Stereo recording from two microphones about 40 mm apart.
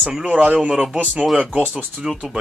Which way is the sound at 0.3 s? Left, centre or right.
Right.